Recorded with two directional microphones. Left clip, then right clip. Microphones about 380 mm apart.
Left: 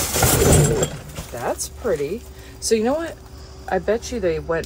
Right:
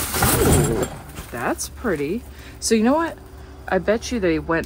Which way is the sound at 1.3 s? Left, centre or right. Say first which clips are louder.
Right 1 dB; right.